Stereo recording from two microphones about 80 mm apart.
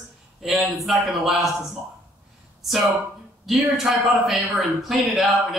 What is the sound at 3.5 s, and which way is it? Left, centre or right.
A man's voice, centre.